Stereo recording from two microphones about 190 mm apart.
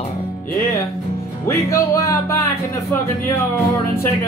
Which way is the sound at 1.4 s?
15° left (ahead or behind).